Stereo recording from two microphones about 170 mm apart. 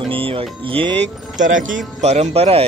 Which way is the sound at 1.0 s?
50° right (ahead or behind).